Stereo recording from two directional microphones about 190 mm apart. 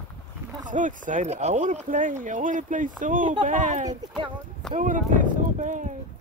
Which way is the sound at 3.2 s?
25° right (ahead or behind).